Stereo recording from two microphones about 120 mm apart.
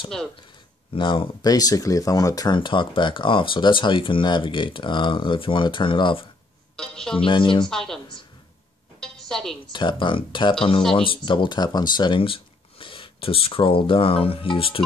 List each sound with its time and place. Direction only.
0.9 s speech: 45° left (ahead or behind)
1.4 s speech: 30° left (ahead or behind)
6.8 s speech: 5° left (ahead or behind)
7.2 s speech: 45° left (ahead or behind)
7.7 s a woman's voice: 5° left (ahead or behind)
9.0 s a sound: 5° left (ahead or behind)
9.7 s speech: 40° left (ahead or behind)